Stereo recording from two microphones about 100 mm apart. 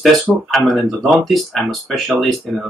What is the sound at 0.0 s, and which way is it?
Speech, centre (ahead or behind).